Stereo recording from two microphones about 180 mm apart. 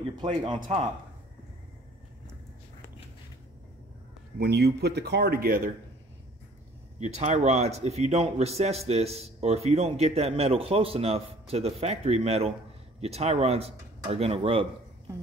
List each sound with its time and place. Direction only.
0.2 s speech: 25° right (ahead or behind)
4.4 s speech: 60° right (ahead or behind)
7.0 s speech: 40° right (ahead or behind)